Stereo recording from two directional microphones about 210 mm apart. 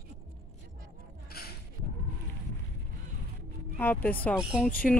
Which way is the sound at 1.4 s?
45° left (ahead or behind).